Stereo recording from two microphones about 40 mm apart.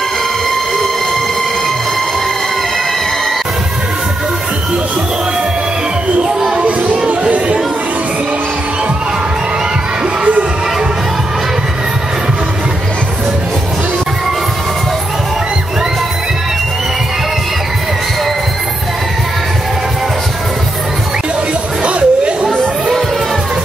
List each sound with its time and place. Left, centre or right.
6.6 s music: right
7.1 s chatter: right
21.8 s a sound: right